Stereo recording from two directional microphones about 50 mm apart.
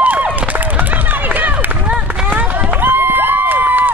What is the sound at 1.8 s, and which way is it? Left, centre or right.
Run, right.